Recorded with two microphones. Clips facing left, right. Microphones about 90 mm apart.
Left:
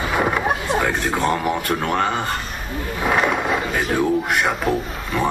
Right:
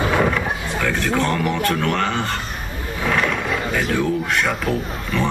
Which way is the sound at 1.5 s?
15° left (ahead or behind).